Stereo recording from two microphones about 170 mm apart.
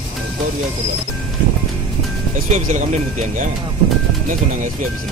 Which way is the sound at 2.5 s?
45° right (ahead or behind).